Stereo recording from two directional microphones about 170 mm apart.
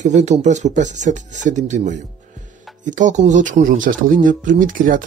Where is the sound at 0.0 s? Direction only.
45° right (ahead or behind).